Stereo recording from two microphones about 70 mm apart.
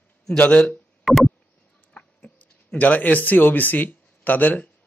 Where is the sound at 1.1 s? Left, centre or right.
Centre.